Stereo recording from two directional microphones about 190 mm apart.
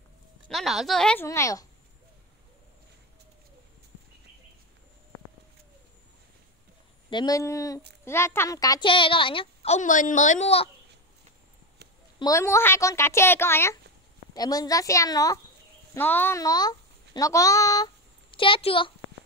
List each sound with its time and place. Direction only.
0.5 s speech: centre (ahead or behind)
1.2 s a woman's voice: 15° left (ahead or behind)
7.1 s a woman's voice: 20° left (ahead or behind)
12.2 s a woman's voice: 15° left (ahead or behind)